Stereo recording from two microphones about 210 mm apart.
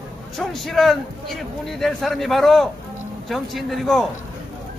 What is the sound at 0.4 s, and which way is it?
A man's voice, centre (ahead or behind).